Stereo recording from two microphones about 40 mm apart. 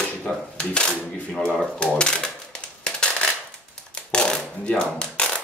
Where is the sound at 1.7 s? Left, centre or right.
Left.